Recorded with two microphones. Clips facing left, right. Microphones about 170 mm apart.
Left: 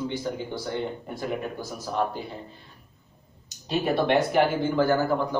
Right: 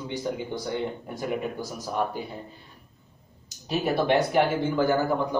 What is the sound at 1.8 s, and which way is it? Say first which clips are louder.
Speech: left 1 dB; 10° right (ahead or behind).